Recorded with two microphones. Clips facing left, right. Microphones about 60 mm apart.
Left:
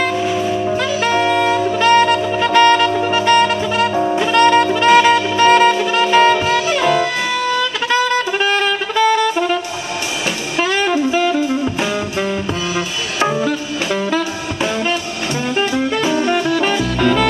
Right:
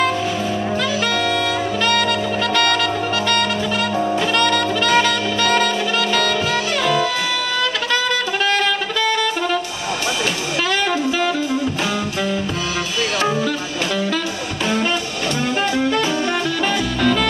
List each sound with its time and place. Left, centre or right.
0.7 s saxophone: left
8.4 s saxophone: left
10.6 s saxophone: left
13.2 s music: centre
15.7 s music: centre
16.6 s saxophone: centre